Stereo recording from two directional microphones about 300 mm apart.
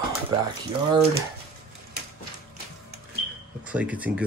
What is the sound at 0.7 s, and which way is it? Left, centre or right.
Speech, centre.